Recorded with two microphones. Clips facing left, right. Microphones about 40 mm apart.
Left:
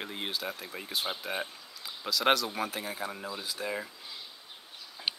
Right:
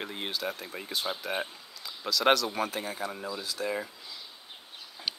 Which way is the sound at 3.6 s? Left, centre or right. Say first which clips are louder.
Right 3 dB; centre.